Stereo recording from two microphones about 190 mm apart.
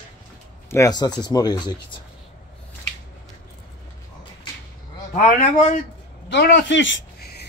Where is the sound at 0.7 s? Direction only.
15° left (ahead or behind).